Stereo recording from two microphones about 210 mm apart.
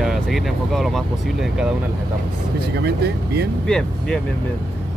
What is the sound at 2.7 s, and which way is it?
Speech, 50° right (ahead or behind).